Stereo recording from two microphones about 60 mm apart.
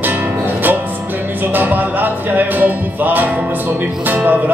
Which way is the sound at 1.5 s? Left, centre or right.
Right.